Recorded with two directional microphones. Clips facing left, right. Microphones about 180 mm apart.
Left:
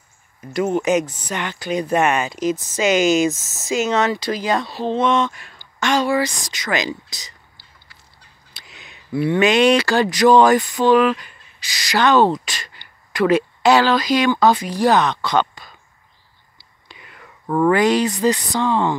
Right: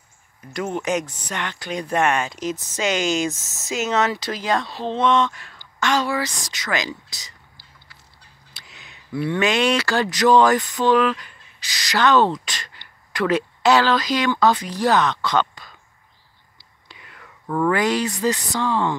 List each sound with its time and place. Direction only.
0.7 s speech: 5° left (ahead or behind)
8.5 s speech: 15° left (ahead or behind)
16.8 s whispering: 15° left (ahead or behind)
17.5 s speech: 25° left (ahead or behind)